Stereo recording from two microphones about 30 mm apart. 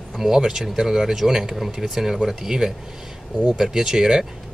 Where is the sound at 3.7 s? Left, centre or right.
Centre.